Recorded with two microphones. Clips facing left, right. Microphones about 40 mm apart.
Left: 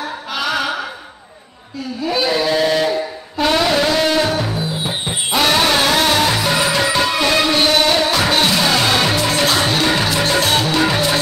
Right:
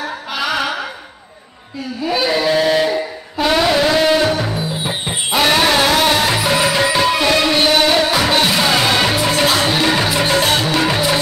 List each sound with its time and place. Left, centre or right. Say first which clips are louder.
0.3 s music: even; centre
2.0 s a sound: right 1 dB; centre
10.4 s music: even; centre